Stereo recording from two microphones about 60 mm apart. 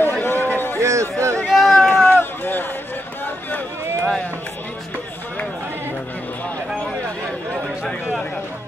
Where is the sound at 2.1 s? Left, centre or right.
Left.